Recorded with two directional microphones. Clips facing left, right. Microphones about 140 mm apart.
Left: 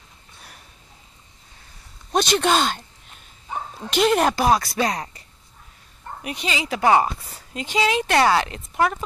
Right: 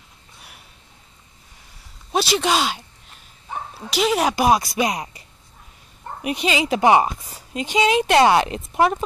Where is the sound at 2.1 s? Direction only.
5° right (ahead or behind).